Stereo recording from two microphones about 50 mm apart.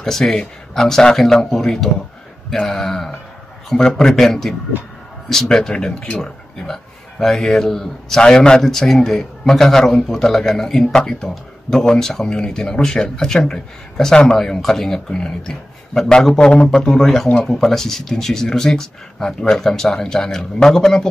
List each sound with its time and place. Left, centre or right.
0.0 s a man's voice: centre
6.6 s a man's voice: centre
10.9 s speech: centre